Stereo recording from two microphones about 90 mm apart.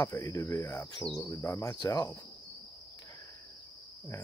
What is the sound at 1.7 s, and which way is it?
Cricket, 55° left (ahead or behind).